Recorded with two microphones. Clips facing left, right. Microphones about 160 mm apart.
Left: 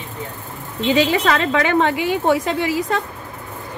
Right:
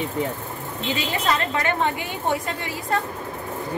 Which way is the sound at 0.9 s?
90° left.